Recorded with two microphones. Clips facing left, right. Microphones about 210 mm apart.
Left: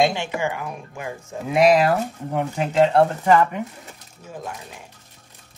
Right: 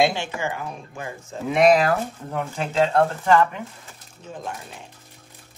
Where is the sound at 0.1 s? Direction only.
15° left (ahead or behind).